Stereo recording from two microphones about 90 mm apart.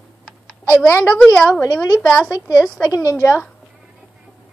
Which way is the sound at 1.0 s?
15° left (ahead or behind).